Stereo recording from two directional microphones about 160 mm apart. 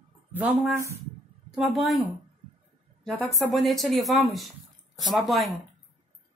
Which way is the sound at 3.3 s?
Centre (ahead or behind).